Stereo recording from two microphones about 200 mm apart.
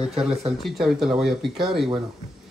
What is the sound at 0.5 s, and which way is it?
Speech, centre (ahead or behind).